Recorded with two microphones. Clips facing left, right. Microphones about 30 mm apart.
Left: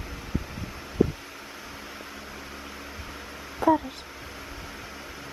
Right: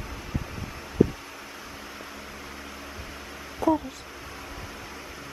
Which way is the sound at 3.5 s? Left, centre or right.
Centre.